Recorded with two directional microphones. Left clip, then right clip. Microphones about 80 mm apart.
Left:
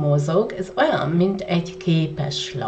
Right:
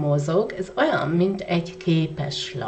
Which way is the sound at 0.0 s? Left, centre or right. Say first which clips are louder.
Left 2 dB; right.